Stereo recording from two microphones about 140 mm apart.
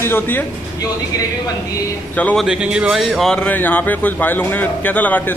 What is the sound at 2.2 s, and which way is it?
Speech, 10° left (ahead or behind).